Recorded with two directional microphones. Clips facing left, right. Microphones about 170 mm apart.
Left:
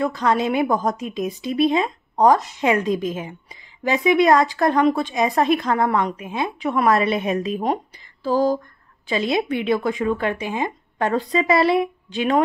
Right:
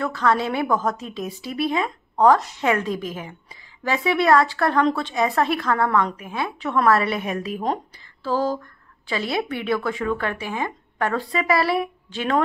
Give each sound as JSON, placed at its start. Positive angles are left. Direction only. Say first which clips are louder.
{"t": 0.0, "sound": "speech", "louder": "left 2 dB", "side_deg": 15}